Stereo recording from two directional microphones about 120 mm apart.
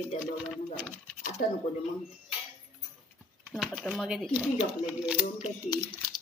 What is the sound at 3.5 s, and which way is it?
Speech, 5° left (ahead or behind).